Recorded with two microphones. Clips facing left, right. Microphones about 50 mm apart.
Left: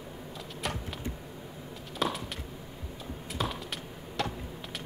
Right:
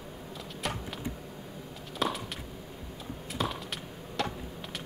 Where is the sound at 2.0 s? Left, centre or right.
Centre.